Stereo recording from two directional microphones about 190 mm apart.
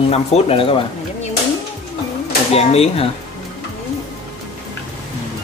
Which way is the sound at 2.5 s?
30° left (ahead or behind).